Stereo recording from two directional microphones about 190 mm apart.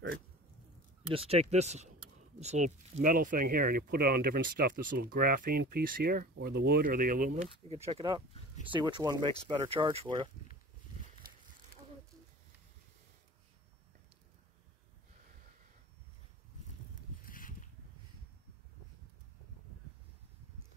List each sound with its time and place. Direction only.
1.1 s speech: 30° right (ahead or behind)
7.9 s speech: 25° right (ahead or behind)
17.2 s a sound: 45° left (ahead or behind)